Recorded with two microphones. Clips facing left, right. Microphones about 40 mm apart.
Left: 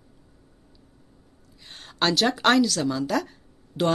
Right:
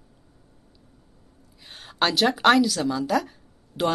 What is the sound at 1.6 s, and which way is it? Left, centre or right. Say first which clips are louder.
A woman's voice: right 2 dB; centre.